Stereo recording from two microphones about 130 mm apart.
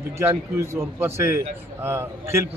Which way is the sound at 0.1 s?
20° right (ahead or behind).